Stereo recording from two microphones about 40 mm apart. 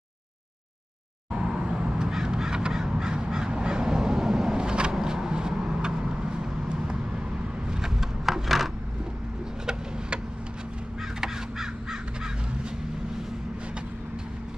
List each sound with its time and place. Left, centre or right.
1.3 s crow: right
3.5 s fowl: centre
4.6 s vehicle: right
7.6 s a sound: centre
8.0 s wood: centre
11.1 s crow: centre